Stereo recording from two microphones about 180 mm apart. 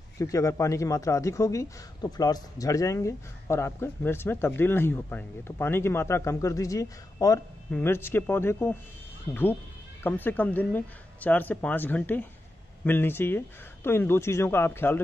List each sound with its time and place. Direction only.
0.2 s speech: 15° left (ahead or behind)